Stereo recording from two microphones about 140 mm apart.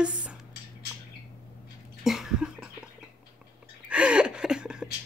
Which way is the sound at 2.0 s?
5° right (ahead or behind).